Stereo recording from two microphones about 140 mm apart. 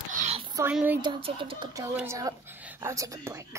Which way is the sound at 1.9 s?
20° right (ahead or behind).